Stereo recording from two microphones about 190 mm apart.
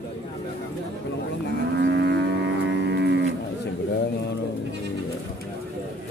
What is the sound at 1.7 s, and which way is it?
Livestock, 60° right (ahead or behind).